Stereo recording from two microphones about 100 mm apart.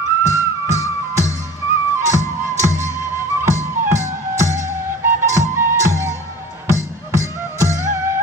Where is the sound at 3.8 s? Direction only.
30° right (ahead or behind).